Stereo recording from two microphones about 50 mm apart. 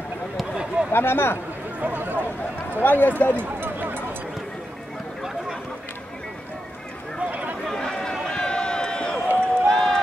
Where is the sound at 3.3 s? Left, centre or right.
Right.